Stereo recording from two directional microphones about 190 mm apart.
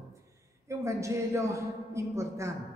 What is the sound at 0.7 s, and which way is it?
A man's voice, 15° right (ahead or behind).